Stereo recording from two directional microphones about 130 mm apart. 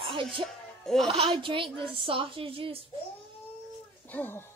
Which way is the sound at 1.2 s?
45° right (ahead or behind).